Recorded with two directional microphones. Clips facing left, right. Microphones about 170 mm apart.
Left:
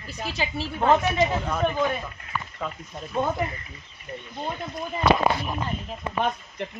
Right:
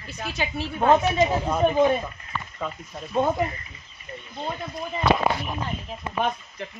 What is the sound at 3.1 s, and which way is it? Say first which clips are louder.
Speech: right 3 dB; 20° right (ahead or behind).